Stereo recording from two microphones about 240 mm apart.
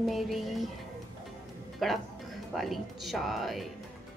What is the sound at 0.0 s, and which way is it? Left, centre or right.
Speech, centre.